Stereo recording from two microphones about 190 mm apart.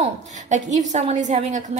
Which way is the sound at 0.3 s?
40° right (ahead or behind).